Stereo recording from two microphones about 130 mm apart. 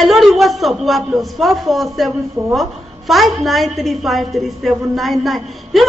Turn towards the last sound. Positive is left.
turn(degrees=0)  # may be behind; listen again after turning